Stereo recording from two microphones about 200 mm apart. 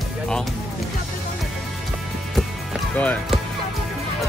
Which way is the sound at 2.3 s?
5° left (ahead or behind).